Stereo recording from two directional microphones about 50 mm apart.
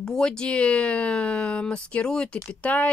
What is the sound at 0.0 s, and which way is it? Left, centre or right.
Speech, centre.